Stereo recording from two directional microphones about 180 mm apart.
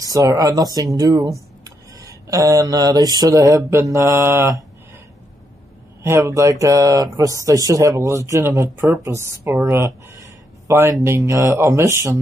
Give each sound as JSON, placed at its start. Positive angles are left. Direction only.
{"t": 0.0, "sound": "speech", "side_deg": -20}
{"t": 1.6, "sound": "a sound", "side_deg": -20}
{"t": 6.0, "sound": "speech", "side_deg": -15}